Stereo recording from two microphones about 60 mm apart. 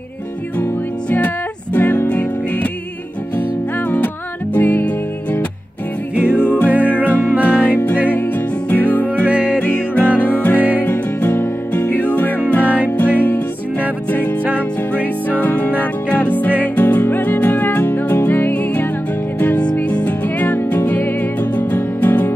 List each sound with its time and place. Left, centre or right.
1.1 s music: left
4.6 s music: left
6.1 s music: left
14.4 s music: right
15.2 s music: left